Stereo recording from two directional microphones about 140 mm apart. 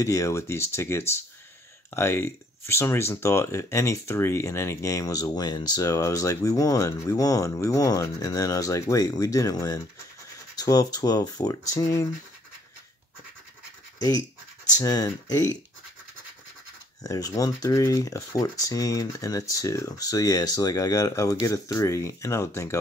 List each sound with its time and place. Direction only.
0.0 s speech: 20° left (ahead or behind)
14.8 s speech: 25° left (ahead or behind)
17.0 s speech: 25° left (ahead or behind)